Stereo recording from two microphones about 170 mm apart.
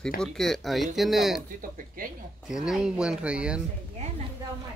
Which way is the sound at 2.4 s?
Centre (ahead or behind).